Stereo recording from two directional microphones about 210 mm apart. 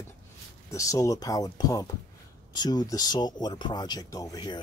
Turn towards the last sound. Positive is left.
turn(degrees=20)  # may be behind; listen again after turning